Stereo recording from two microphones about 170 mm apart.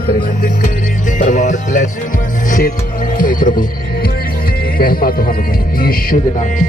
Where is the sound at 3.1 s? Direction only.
55° left (ahead or behind).